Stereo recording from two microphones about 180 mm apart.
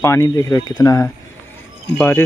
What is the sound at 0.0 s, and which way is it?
Speech, 15° left (ahead or behind).